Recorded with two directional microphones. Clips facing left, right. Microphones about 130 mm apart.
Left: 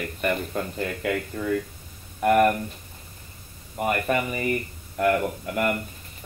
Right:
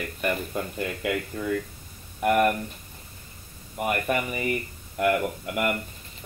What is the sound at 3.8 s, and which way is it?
Speech, 35° left (ahead or behind).